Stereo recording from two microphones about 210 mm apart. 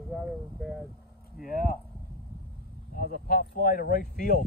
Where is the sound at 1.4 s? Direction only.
40° left (ahead or behind).